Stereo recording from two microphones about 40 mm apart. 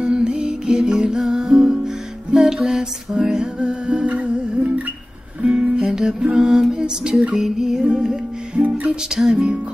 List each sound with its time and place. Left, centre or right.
0.0 s music: right
5.4 s music: right
7.8 s music: right
8.6 s music: right
9.1 s music: centre